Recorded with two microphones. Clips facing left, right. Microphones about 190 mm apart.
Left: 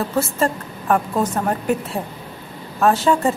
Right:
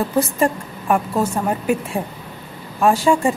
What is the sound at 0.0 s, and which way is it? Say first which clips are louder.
A woman's voice: right 2 dB; 15° right (ahead or behind).